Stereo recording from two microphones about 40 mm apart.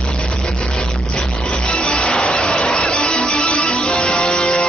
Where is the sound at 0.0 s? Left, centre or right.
Left.